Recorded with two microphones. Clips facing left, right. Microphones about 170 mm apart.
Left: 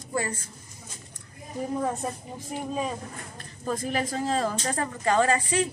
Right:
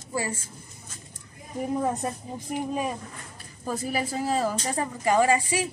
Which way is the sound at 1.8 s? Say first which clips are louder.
Right 1 dB; 10° right (ahead or behind).